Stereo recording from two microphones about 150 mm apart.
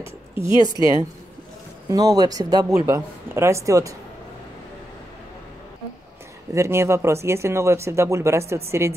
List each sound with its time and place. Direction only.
0.7 s speech: 25° right (ahead or behind)
6.5 s speech: 20° right (ahead or behind)